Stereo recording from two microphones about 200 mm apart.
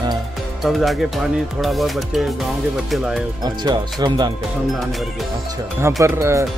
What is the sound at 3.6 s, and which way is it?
Speech, 20° right (ahead or behind).